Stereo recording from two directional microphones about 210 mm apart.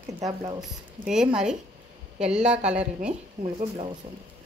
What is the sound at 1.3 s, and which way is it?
A woman's voice, 5° right (ahead or behind).